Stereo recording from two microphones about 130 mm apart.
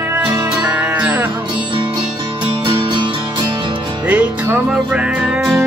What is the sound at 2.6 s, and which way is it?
Music, 40° right (ahead or behind).